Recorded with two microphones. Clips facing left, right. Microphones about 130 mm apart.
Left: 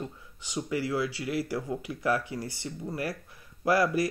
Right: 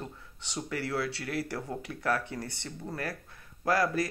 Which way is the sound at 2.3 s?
60° right (ahead or behind).